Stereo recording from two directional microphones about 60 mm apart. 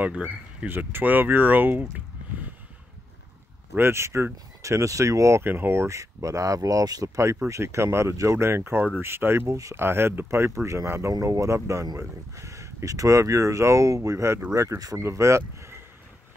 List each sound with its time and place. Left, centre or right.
0.0 s speech: right
0.7 s speech: right
3.7 s speech: right
5.4 s speech: right
5.9 s speech: right
7.4 s speech: right
8.5 s speech: right
9.5 s speech: right
9.8 s speech: right
14.5 s speech: right
15.0 s speech: right